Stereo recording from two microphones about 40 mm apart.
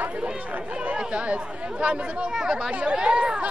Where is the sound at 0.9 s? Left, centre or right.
Right.